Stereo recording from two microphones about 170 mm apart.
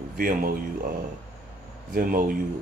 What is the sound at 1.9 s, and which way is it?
Speech, 55° right (ahead or behind).